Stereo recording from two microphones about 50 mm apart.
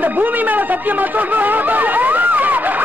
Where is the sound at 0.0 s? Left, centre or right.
Right.